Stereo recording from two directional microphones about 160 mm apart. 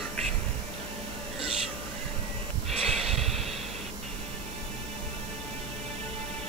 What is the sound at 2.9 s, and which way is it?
Snort, centre (ahead or behind).